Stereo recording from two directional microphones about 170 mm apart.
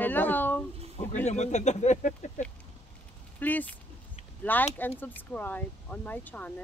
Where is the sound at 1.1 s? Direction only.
45° left (ahead or behind).